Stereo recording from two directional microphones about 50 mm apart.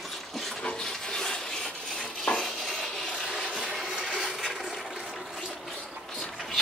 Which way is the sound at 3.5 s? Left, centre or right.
Centre.